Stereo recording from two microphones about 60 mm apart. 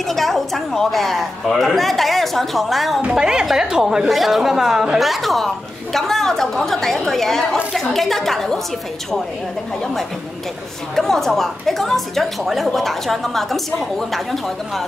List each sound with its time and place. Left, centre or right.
0.1 s a woman's voice: centre
3.0 s a woman's voice: right
3.3 s a woman's voice: centre
11.0 s a woman's voice: centre